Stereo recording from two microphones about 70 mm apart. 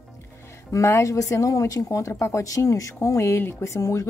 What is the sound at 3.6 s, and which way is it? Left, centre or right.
Speech, left.